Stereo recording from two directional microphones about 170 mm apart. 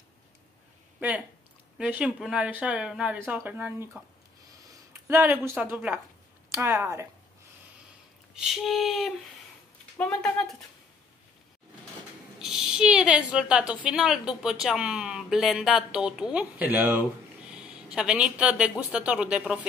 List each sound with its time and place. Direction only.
0.9 s speech: 10° right (ahead or behind)
4.6 s a sound: 10° right (ahead or behind)
5.5 s speech: 10° right (ahead or behind)
8.4 s a woman's voice: centre (ahead or behind)
12.4 s a woman's voice: 5° right (ahead or behind)
17.5 s a sound: 5° right (ahead or behind)
17.9 s a woman's voice: 5° right (ahead or behind)